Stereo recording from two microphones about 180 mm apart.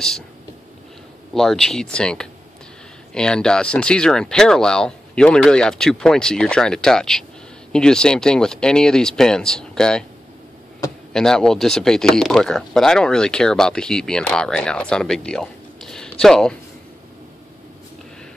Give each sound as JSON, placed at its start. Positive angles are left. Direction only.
{"t": 1.3, "sound": "speech", "side_deg": 0}
{"t": 11.1, "sound": "speech", "side_deg": 5}